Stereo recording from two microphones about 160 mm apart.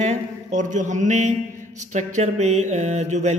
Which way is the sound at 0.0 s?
50° right (ahead or behind).